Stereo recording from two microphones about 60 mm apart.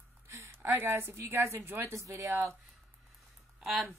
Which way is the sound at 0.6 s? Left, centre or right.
Right.